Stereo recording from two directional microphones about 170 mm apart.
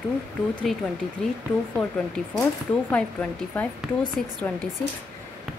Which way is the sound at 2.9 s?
10° left (ahead or behind).